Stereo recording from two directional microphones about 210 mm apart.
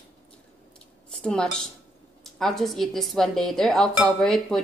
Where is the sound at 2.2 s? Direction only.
Centre (ahead or behind).